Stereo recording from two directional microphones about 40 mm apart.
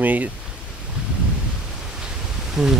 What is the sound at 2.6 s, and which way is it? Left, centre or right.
Speech, centre.